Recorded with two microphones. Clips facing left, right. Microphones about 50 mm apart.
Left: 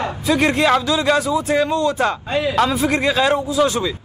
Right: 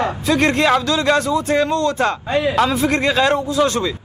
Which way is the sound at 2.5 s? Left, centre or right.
Centre.